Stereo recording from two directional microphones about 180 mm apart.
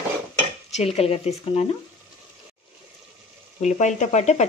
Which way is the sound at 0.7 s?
35° left (ahead or behind).